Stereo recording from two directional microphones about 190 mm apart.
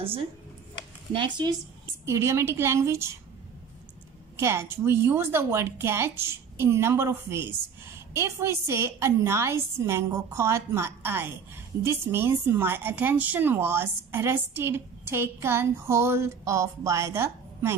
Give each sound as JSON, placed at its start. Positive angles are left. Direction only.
{"t": 0.0, "sound": "speech", "side_deg": -30}
{"t": 2.0, "sound": "a woman's voice", "side_deg": -15}
{"t": 4.4, "sound": "a woman's voice", "side_deg": -15}